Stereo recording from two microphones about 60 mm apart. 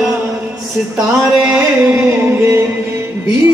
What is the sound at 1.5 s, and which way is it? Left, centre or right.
Music, right.